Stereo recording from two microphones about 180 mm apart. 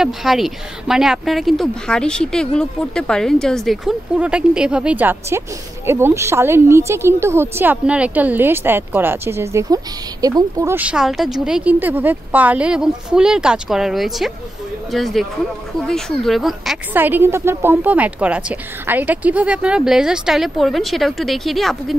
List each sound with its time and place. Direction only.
0.0 s a woman's voice: centre (ahead or behind); by 10.8 s 20° right (ahead or behind)
10.8 s speech: 5° right (ahead or behind)
16.9 s a woman's voice: 10° right (ahead or behind)